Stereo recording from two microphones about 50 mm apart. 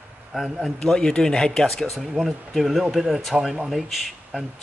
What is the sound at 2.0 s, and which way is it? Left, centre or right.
Speech, centre.